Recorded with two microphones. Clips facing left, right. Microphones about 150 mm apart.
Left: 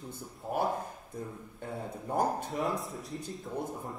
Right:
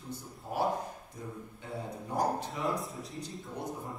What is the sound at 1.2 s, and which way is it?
Speech, 55° left (ahead or behind).